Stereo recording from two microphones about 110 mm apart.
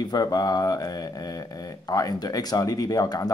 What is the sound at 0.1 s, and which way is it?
Speech, 35° left (ahead or behind).